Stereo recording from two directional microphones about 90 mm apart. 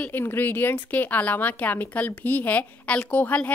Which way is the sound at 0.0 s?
25° left (ahead or behind).